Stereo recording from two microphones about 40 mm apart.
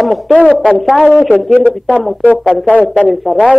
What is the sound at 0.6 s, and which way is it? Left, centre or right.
Speech, right.